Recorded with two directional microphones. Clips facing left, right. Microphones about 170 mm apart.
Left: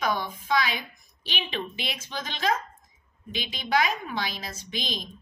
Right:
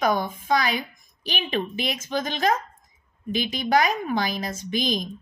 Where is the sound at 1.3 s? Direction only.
45° right (ahead or behind).